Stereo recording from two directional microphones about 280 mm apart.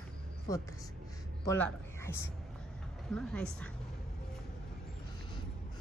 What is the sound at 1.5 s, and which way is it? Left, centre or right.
Speech, centre.